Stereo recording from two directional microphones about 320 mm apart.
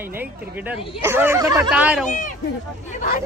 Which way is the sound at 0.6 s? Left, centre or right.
Centre.